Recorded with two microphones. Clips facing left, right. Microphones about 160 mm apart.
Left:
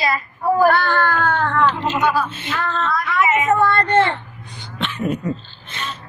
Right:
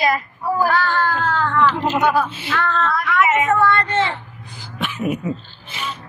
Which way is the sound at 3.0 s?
20° left (ahead or behind).